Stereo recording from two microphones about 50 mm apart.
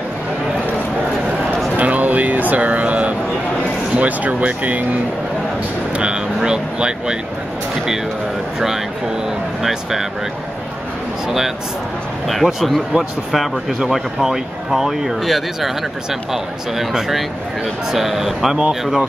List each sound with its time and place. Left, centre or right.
1.8 s music: right
3.9 s speech: right
5.9 s speech: centre
8.5 s speech: centre
11.2 s speech: centre